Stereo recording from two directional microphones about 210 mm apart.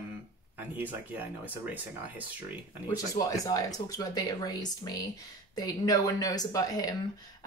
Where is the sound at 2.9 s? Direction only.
15° left (ahead or behind).